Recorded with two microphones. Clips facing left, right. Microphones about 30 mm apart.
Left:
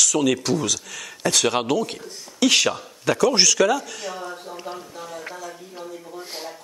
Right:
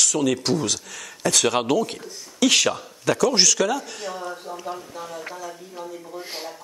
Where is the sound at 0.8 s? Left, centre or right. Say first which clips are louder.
Left 2 dB; left.